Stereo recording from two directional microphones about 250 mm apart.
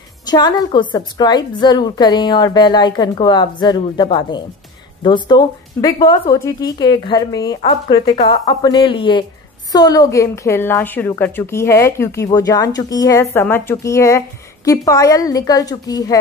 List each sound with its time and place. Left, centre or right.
0.2 s a woman's voice: centre